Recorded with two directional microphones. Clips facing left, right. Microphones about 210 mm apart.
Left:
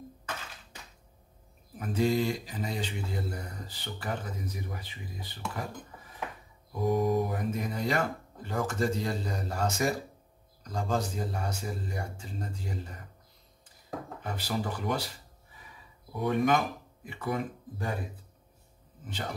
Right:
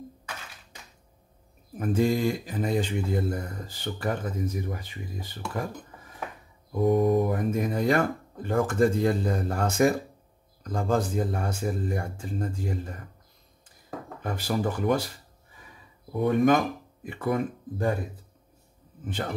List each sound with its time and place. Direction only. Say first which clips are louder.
1.8 s mantra: right 3 dB; 50° right (ahead or behind)
6.9 s mantra: right 5 dB; 55° right (ahead or behind)
14.2 s mantra: right 6 dB; 50° right (ahead or behind)
16.2 s mantra: right 5 dB; 50° right (ahead or behind)